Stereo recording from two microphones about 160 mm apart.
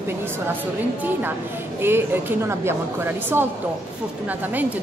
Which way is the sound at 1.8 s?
15° right (ahead or behind).